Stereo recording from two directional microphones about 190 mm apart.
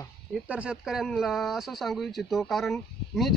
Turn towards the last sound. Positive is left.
turn(degrees=0)  # may be behind; listen again after turning